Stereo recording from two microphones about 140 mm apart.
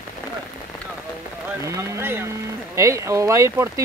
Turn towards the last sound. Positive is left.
turn(degrees=-20)  # may be behind; listen again after turning